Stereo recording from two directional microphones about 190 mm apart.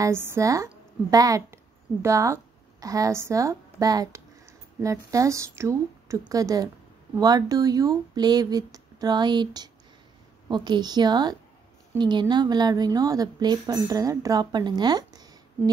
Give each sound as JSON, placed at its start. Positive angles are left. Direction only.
{"t": 0.0, "sound": "a woman's voice", "side_deg": -15}